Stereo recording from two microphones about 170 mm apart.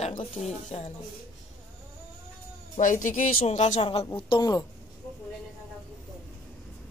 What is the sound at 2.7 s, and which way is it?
Speech, 50° left (ahead or behind).